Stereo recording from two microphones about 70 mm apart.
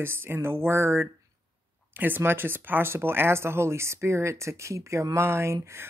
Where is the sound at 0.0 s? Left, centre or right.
Right.